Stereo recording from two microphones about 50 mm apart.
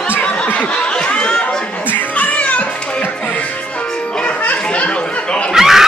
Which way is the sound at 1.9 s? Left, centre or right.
Left.